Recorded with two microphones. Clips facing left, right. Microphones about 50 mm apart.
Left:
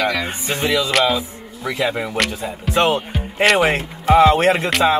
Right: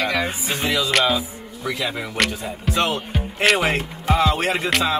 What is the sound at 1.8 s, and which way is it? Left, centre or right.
Speech, left.